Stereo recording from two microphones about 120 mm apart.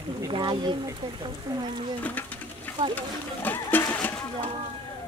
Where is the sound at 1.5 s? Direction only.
30° right (ahead or behind).